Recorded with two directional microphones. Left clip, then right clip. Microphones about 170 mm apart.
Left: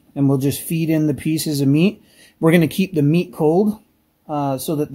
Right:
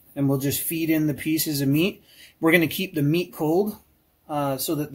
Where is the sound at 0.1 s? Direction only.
70° left (ahead or behind).